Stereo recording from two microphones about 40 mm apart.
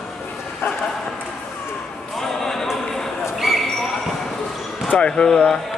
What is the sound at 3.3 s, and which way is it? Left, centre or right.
Basketball bounce, centre.